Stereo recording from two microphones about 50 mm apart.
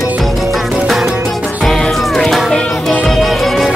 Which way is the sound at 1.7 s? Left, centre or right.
Centre.